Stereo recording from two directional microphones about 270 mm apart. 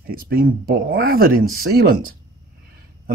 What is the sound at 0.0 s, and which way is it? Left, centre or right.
Speech, right.